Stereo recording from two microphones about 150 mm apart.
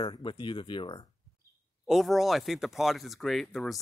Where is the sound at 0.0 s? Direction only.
30° left (ahead or behind).